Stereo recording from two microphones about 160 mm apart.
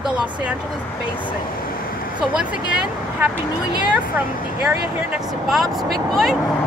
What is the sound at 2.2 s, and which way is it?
A woman's voice, 5° right (ahead or behind).